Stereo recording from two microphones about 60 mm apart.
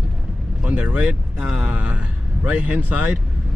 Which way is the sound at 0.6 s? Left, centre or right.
Right.